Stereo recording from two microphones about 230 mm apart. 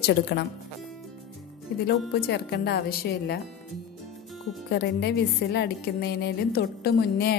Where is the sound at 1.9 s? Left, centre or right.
Left.